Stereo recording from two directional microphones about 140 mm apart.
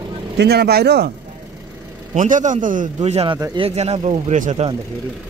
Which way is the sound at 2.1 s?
65° right (ahead or behind).